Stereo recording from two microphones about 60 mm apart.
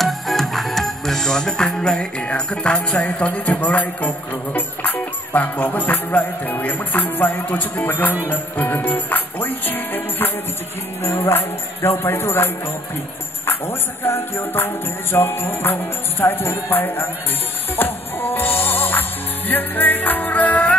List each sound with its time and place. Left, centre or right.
0.0 s music: centre; by 20.7 s left